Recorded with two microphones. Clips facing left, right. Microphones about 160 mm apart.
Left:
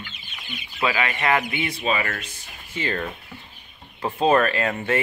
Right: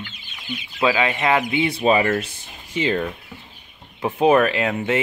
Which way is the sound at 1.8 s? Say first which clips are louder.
Right 9 dB; 30° right (ahead or behind).